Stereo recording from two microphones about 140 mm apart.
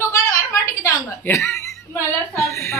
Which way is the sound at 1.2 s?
15° left (ahead or behind).